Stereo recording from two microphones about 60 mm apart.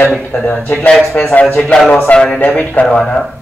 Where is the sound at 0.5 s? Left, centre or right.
Left.